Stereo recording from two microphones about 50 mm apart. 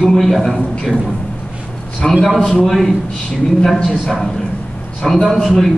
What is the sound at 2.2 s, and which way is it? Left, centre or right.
A man's voice, centre.